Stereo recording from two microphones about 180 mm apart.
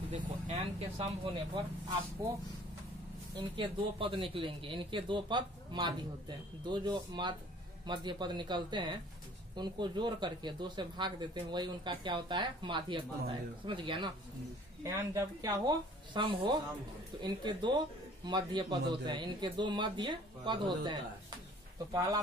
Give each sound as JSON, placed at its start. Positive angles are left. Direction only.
{"t": 0.5, "sound": "speech", "side_deg": -30}
{"t": 2.2, "sound": "speech", "side_deg": -20}